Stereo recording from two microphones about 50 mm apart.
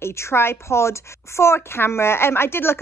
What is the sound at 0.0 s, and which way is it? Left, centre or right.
A woman's voice, left.